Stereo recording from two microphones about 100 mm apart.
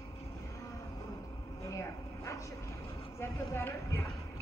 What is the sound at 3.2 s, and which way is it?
Clip-clop, 25° left (ahead or behind).